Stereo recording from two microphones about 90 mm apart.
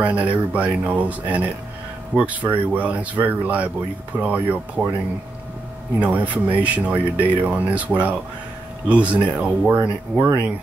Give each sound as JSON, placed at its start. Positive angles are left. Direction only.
{"t": 0.0, "sound": "speech", "side_deg": -15}
{"t": 5.9, "sound": "speech", "side_deg": -15}